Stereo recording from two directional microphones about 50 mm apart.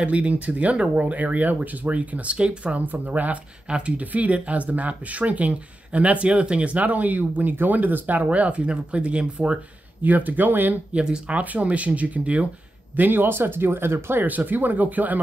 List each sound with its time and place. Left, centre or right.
0.0 s speech: right
10.0 s speech: right
10.9 s speech: right
12.9 s speech: right
14.2 s speech: right